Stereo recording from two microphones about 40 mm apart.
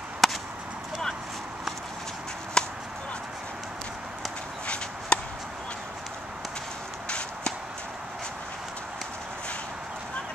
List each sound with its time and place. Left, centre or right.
0.2 s chop: centre
2.6 s chop: left
5.1 s chop: left
7.1 s a sound: left